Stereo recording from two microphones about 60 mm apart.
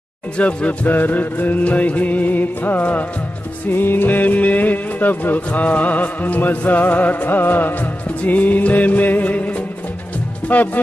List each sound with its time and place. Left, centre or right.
0.4 s speech: left